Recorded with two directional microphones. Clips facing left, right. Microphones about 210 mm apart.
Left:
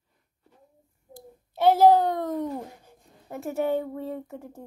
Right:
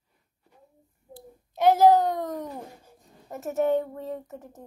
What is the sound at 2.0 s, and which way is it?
Speech, 10° right (ahead or behind).